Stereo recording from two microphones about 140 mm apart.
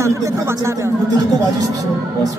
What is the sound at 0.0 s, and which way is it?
Speech, 20° right (ahead or behind).